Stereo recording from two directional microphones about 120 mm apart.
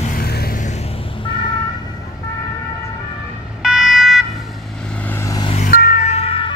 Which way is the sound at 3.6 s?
5° right (ahead or behind).